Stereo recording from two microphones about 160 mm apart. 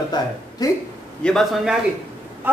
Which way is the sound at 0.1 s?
25° left (ahead or behind).